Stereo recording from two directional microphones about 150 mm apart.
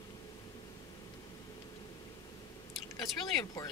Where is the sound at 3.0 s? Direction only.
25° left (ahead or behind).